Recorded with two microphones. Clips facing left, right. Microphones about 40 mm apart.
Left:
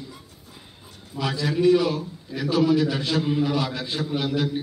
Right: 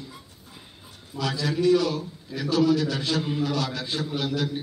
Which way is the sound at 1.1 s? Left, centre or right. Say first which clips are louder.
Left 2 dB; centre.